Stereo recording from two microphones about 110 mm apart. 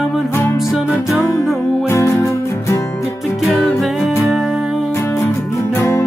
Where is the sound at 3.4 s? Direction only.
Centre (ahead or behind).